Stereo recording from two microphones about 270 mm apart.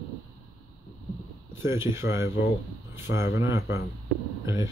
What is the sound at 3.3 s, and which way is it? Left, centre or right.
Speech, left.